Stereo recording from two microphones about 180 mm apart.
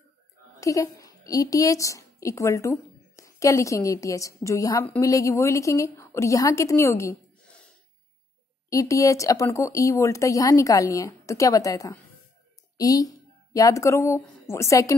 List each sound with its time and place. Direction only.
0.6 s a woman's voice: 20° left (ahead or behind)
8.6 s speech: 20° left (ahead or behind)